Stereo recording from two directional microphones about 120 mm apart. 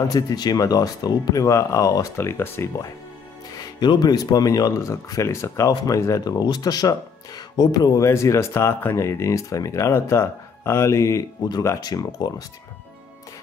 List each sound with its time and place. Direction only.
0.1 s speech: 30° left (ahead or behind)
3.5 s speech: 35° left (ahead or behind)